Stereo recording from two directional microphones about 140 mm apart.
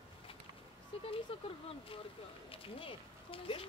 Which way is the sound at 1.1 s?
40° left (ahead or behind).